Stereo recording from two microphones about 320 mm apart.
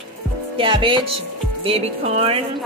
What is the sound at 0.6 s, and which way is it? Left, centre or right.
Speech, centre.